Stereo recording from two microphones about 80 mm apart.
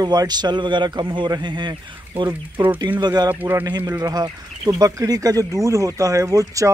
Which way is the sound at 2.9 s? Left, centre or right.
Right.